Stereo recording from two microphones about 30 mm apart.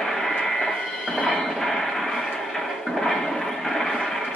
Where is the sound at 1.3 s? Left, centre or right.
Centre.